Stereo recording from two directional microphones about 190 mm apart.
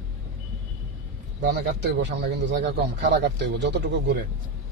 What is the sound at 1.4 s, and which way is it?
Speech, 65° right (ahead or behind).